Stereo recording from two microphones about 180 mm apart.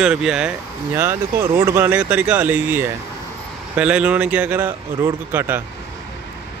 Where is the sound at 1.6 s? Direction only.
15° right (ahead or behind).